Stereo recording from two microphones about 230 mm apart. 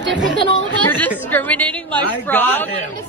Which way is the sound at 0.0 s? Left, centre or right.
Right.